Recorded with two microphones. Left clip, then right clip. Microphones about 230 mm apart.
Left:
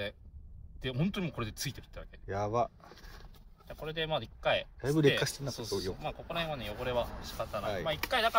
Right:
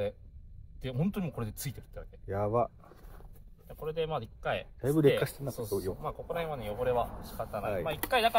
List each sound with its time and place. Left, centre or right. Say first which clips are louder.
0.8 s speech: even; right
2.2 s speech: right 2 dB; centre
3.6 s speech: right 2 dB; right
4.7 s speech: right 2 dB; centre
6.0 s speech: right 1 dB; right